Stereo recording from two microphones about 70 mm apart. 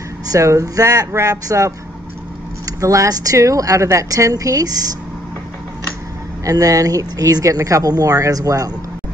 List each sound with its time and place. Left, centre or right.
0.3 s speech: right
6.4 s speech: right